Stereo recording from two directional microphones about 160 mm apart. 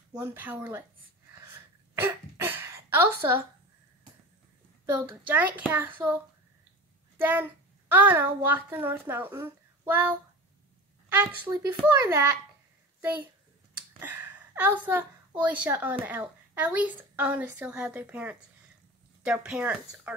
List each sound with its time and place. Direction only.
0.1 s speech: 10° right (ahead or behind)
1.3 s a sound: 15° right (ahead or behind)
5.2 s speech: 10° right (ahead or behind)
7.2 s a child's voice: 10° right (ahead or behind)
13.9 s a woman's voice: 10° right (ahead or behind)